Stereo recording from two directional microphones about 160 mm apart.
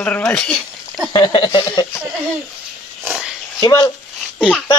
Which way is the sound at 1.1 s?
30° left (ahead or behind).